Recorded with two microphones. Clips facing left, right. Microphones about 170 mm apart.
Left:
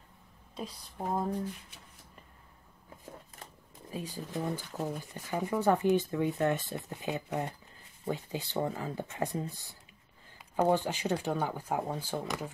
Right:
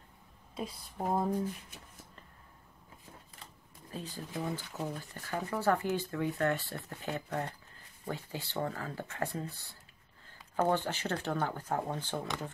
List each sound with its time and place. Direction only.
0.6 s speech: 5° right (ahead or behind)
3.9 s speech: 15° left (ahead or behind)